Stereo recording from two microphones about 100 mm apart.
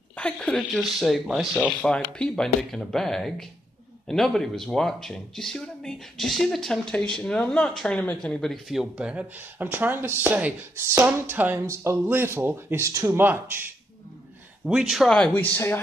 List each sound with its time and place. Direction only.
0.2 s speech: 10° left (ahead or behind)
0.7 s speech: centre (ahead or behind)
1.7 s speech: 10° left (ahead or behind); by 11.6 s 20° right (ahead or behind)
11.6 s speech: 30° right (ahead or behind)
14.7 s speech: 5° right (ahead or behind)
15.0 s speech: 10° left (ahead or behind)